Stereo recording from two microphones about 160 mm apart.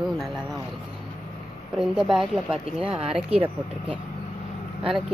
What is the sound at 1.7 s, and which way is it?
Speech, 5° right (ahead or behind).